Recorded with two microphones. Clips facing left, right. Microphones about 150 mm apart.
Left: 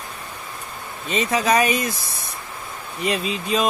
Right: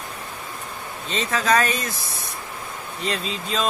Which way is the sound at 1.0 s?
15° left (ahead or behind).